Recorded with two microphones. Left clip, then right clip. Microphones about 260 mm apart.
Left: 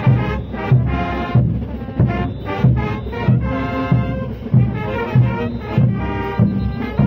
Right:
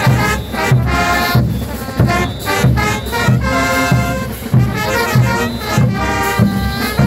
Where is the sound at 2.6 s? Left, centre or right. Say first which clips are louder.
Right 7 dB; right.